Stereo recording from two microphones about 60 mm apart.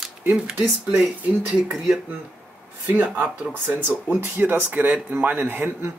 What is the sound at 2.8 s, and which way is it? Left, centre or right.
Speech, right.